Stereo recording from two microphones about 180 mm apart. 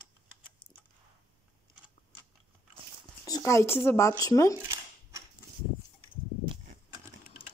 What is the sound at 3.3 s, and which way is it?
Speech, 20° left (ahead or behind).